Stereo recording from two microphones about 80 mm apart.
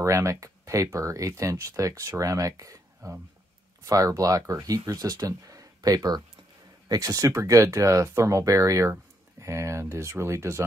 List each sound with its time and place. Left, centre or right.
0.0 s speech: right